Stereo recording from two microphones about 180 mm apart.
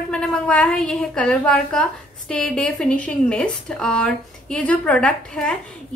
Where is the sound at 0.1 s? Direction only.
5° left (ahead or behind).